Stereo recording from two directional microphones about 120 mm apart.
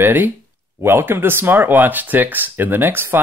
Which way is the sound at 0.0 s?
15° right (ahead or behind).